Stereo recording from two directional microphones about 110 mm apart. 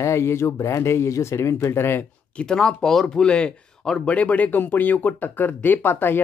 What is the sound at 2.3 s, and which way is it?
Speech, 5° left (ahead or behind).